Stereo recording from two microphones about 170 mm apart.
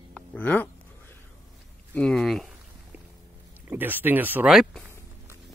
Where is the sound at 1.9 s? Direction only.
5° left (ahead or behind).